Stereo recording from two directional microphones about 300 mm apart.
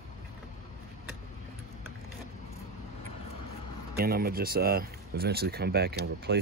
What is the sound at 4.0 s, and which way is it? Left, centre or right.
Speech, right.